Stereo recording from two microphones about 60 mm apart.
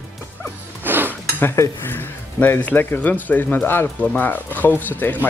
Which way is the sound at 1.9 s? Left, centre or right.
Left.